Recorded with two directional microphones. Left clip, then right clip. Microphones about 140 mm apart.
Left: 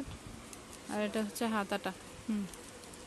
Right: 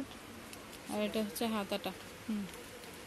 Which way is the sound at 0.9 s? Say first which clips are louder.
Left 1 dB; centre (ahead or behind).